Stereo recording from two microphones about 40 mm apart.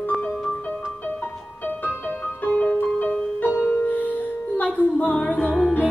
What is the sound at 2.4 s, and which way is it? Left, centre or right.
Music, left.